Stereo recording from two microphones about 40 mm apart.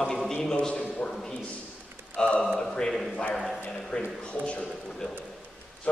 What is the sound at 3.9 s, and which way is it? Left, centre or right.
Speech, left.